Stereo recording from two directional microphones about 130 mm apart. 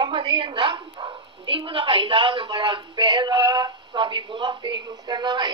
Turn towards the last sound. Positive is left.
turn(degrees=-35)  # may be behind; listen again after turning